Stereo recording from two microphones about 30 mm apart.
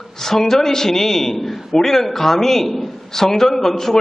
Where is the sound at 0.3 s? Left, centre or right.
Centre.